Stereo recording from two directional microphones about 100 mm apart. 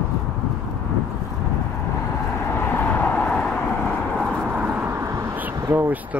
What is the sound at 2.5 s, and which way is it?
Vehicle, 20° left (ahead or behind).